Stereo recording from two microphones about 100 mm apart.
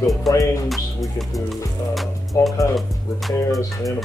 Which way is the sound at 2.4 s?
30° left (ahead or behind).